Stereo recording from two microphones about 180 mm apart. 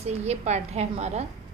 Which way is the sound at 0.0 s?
35° right (ahead or behind).